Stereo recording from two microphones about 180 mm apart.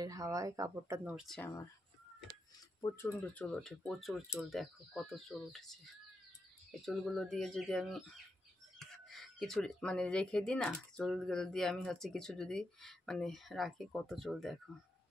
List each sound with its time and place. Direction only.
0.0 s speech: 20° right (ahead or behind); by 1.5 s centre (ahead or behind)
2.8 s speech: 15° left (ahead or behind)